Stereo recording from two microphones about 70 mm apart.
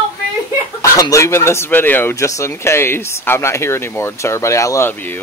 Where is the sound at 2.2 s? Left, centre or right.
Left.